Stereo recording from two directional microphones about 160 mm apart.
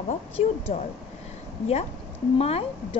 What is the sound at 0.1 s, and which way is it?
Speech, 40° left (ahead or behind).